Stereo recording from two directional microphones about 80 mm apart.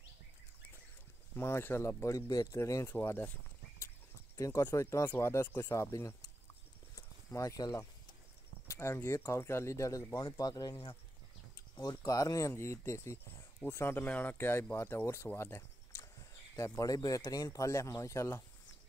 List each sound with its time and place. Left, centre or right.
1.3 s speech: left
2.1 s speech: left
2.9 s speech: left
4.4 s speech: left
7.0 s a sound: left
8.6 s speech: left
16.8 s speech: left